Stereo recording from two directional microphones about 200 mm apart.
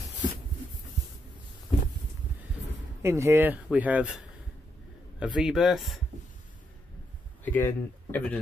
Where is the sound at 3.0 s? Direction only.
15° right (ahead or behind).